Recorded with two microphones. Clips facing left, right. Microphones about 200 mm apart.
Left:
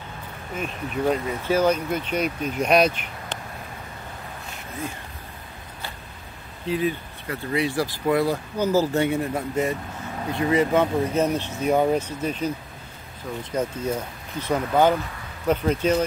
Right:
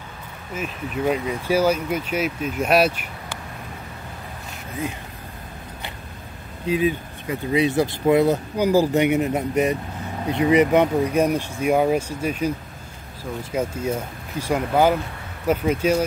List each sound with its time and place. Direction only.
0.6 s speech: 5° right (ahead or behind)
6.7 s speech: 15° right (ahead or behind)